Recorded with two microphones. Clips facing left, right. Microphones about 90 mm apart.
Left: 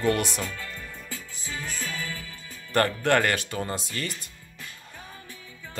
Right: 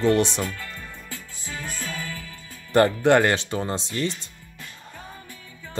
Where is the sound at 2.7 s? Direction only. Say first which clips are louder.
Right 5 dB; 20° right (ahead or behind).